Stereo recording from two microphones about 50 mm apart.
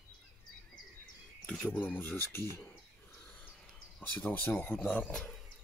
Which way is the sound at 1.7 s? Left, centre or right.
Left.